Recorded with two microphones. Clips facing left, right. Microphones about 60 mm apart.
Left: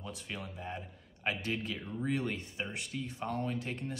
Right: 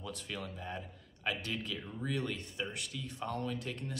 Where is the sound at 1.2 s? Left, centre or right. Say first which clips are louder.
Left 2 dB; left.